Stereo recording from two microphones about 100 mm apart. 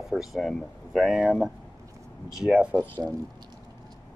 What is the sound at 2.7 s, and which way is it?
Speech, 20° left (ahead or behind).